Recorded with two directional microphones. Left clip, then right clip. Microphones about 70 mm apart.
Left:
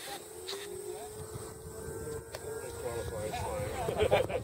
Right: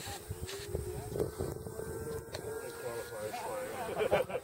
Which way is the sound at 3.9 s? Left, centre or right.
Left.